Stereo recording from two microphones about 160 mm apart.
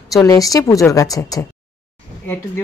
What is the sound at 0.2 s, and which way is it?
Speech, 20° left (ahead or behind).